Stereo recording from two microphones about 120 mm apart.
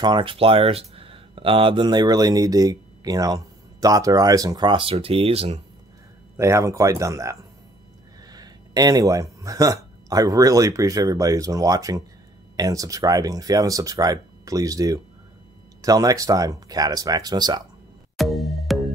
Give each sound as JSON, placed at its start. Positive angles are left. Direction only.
{"t": 0.0, "sound": "speech", "side_deg": -45}
{"t": 6.3, "sound": "speech", "side_deg": -25}
{"t": 18.1, "sound": "music", "side_deg": 0}